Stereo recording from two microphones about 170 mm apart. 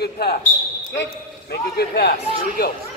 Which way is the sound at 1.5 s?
70° left (ahead or behind).